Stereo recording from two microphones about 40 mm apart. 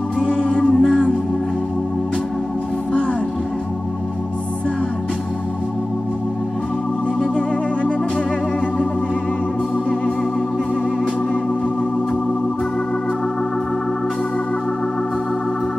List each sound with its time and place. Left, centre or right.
0.2 s music: left
0.7 s music: centre